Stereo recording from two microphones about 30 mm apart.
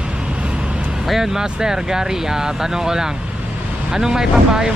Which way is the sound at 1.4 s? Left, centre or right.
Right.